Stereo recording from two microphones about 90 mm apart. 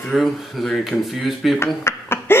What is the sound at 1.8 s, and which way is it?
Chuckle, 25° left (ahead or behind).